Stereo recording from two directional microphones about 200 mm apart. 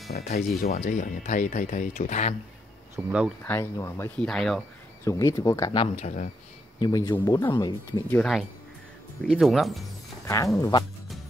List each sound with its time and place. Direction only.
0.7 s speech: 40° left (ahead or behind)
3.0 s speech: 10° right (ahead or behind)
3.4 s speech: 10° left (ahead or behind)
4.3 s speech: centre (ahead or behind)
5.0 s speech: 15° left (ahead or behind)
5.9 s speech: 35° left (ahead or behind)
6.8 s speech: 20° left (ahead or behind)
8.2 s speech: centre (ahead or behind)
10.2 s speech: 15° left (ahead or behind)